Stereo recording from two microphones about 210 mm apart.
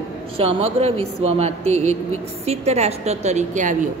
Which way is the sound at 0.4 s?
30° right (ahead or behind).